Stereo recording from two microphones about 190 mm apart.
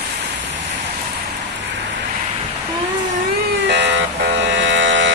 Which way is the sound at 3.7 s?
70° right (ahead or behind).